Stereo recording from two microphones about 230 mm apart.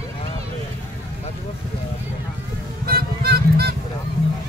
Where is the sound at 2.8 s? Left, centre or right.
Right.